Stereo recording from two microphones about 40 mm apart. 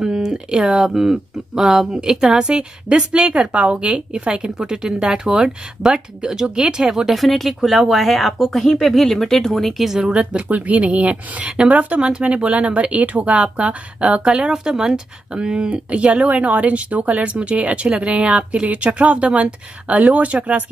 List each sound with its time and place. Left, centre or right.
0.0 s a woman's voice: centre
7.2 s speech: centre
9.8 s speech: centre
10.1 s speech: right
12.0 s speech: right